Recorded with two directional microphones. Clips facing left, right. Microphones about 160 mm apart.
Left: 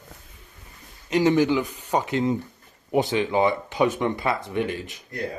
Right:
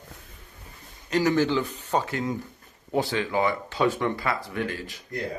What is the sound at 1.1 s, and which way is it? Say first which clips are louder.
Speech: left 3 dB; 20° left (ahead or behind).